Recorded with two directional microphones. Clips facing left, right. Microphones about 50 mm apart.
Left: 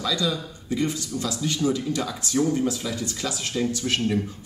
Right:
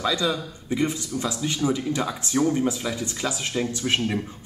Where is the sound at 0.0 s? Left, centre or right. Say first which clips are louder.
Right 2 dB; right.